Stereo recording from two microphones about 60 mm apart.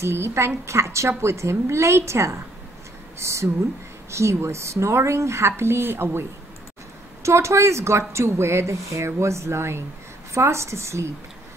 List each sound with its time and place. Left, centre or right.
0.0 s a woman's voice: right
7.2 s speech: right